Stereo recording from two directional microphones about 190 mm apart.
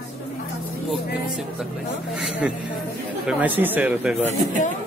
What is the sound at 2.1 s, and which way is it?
Speech, 5° right (ahead or behind).